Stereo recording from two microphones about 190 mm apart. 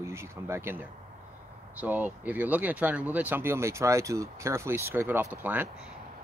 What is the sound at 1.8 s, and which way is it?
Speech, 10° right (ahead or behind).